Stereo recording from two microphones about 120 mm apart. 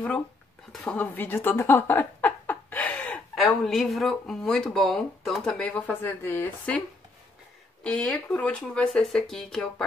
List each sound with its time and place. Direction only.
0.8 s a sound: 15° left (ahead or behind)
3.3 s speech: centre (ahead or behind)
7.8 s speech: 10° left (ahead or behind)